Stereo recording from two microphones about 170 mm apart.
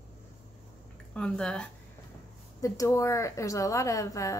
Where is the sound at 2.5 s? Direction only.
20° left (ahead or behind).